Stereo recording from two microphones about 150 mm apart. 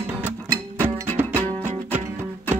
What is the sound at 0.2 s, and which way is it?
Music, 15° right (ahead or behind).